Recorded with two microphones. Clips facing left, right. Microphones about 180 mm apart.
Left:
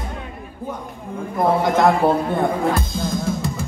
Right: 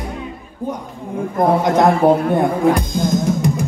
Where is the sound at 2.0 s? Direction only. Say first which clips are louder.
Right 5 dB; 15° right (ahead or behind).